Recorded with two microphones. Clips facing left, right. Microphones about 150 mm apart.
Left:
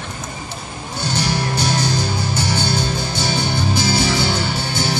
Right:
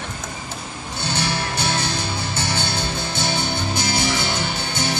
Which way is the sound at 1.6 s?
25° right (ahead or behind).